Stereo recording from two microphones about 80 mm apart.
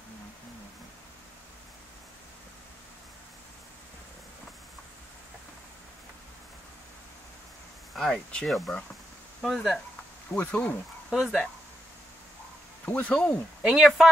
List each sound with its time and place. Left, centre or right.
7.9 s speech: centre
10.3 s speech: centre
11.1 s speech: centre
12.8 s speech: centre
13.6 s speech: centre